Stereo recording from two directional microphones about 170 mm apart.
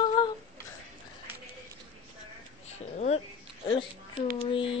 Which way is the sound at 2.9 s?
40° left (ahead or behind).